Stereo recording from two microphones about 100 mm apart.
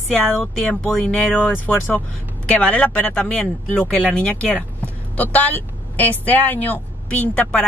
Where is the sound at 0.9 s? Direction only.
10° left (ahead or behind).